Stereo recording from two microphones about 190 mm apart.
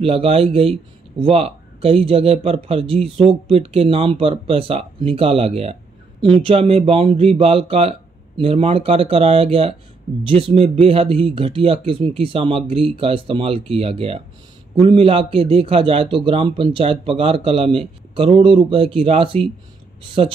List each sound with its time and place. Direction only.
0.0 s a man's voice: 30° right (ahead or behind)